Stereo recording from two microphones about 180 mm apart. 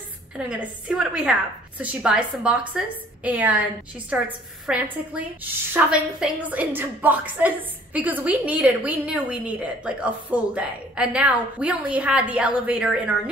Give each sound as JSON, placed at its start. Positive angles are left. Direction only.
{"t": 0.4, "sound": "a woman's voice", "side_deg": -5}